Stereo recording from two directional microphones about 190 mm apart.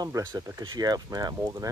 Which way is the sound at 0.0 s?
20° right (ahead or behind).